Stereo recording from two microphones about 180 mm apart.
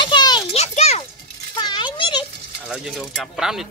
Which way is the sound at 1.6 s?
25° left (ahead or behind).